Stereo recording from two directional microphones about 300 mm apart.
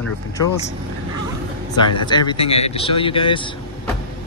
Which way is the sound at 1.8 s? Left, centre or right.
Centre.